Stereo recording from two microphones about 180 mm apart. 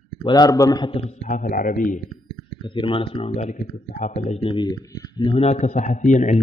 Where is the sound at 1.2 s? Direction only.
50° left (ahead or behind).